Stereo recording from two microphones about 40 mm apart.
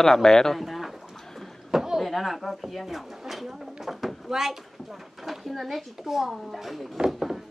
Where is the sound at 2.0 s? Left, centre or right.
Centre.